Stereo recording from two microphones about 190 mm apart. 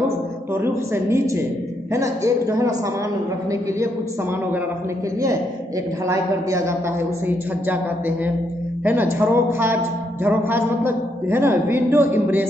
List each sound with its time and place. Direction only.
0.6 s a woman's voice: 15° right (ahead or behind)
6.0 s a woman's voice: 15° right (ahead or behind)
8.8 s a woman's voice: 10° right (ahead or behind)